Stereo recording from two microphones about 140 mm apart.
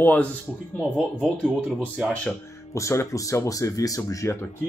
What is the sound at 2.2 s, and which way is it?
Speech, 20° left (ahead or behind).